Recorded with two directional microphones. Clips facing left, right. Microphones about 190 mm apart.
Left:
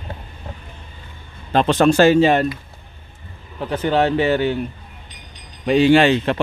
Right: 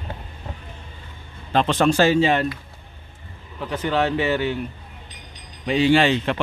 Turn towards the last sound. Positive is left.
turn(degrees=50)  # may be behind; listen again after turning